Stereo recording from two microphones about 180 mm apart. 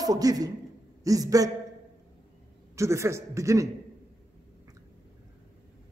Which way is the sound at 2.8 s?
15° right (ahead or behind).